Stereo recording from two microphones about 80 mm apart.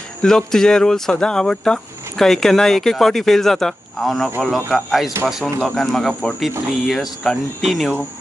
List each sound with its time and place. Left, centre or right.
0.2 s speech: centre